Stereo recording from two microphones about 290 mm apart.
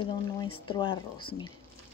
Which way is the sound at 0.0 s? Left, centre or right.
Centre.